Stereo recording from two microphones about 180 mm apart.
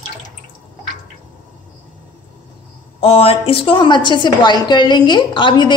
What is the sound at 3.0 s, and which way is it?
A woman's voice, 35° left (ahead or behind).